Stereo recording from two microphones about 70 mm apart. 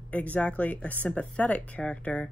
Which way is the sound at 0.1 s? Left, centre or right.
Left.